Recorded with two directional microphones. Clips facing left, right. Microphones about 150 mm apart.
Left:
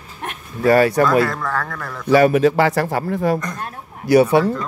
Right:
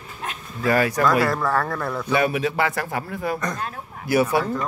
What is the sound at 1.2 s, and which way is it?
Speech, 10° right (ahead or behind).